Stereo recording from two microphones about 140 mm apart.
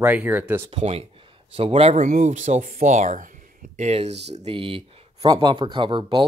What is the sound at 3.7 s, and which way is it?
Speech, 50° right (ahead or behind).